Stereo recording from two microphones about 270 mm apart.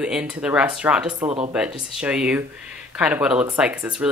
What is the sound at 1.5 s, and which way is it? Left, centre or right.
Speech, centre.